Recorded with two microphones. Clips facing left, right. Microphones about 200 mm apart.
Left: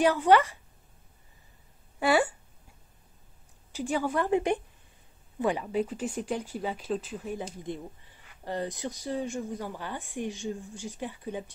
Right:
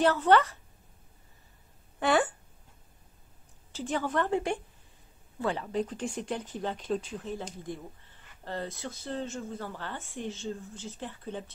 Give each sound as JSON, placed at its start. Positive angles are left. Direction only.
{"t": 0.0, "sound": "speech", "side_deg": 10}
{"t": 2.0, "sound": "speech", "side_deg": 10}
{"t": 3.7, "sound": "speech", "side_deg": 10}
{"t": 5.4, "sound": "speech", "side_deg": 15}
{"t": 7.7, "sound": "speech", "side_deg": 20}